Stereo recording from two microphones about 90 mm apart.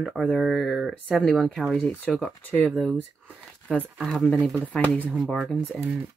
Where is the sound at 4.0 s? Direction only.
5° left (ahead or behind).